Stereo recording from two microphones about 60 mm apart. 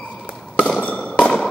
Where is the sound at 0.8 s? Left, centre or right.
Left.